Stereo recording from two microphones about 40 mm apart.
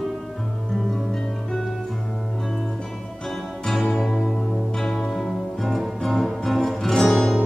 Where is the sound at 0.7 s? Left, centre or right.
Centre.